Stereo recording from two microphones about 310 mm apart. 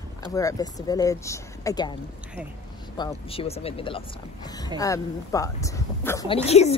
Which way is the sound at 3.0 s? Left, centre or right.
Centre.